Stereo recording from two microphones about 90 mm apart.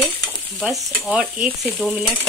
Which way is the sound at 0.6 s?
5° right (ahead or behind).